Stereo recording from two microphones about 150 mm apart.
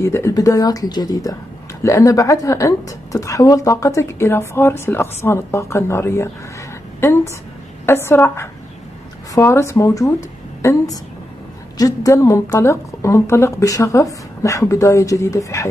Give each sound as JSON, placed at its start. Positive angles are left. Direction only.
{"t": 0.0, "sound": "a woman's voice", "side_deg": 20}
{"t": 7.8, "sound": "a woman's voice", "side_deg": 15}